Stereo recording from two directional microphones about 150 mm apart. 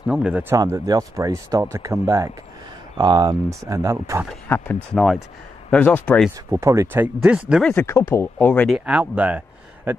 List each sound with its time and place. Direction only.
0.0 s speech: 10° right (ahead or behind)
0.6 s speech: 25° right (ahead or behind)
4.5 s speech: 15° left (ahead or behind)
4.9 s speech: centre (ahead or behind)
5.7 s speech: 10° left (ahead or behind)
6.5 s speech: 20° right (ahead or behind)
7.6 s speech: 15° left (ahead or behind)
8.6 s speech: 5° right (ahead or behind)